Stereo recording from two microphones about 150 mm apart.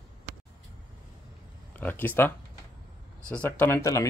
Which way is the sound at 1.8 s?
10° left (ahead or behind).